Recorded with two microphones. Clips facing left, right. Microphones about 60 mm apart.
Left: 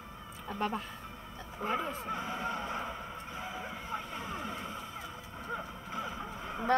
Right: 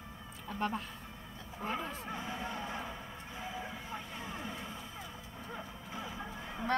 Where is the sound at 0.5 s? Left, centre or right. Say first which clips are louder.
Left 2 dB; centre.